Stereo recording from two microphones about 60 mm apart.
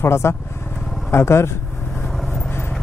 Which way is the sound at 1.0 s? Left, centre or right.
Left.